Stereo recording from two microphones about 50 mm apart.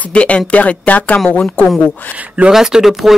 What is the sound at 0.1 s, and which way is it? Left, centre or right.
Speech, left.